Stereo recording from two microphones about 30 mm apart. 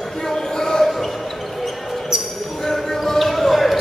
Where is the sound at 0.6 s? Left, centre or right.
Centre.